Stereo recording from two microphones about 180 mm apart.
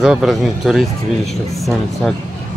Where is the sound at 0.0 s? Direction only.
5° right (ahead or behind).